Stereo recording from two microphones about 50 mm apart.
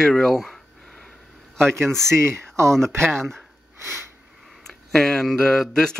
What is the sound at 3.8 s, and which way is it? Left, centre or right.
Sniff, right.